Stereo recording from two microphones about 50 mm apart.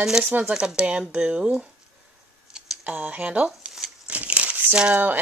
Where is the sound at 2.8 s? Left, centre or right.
Right.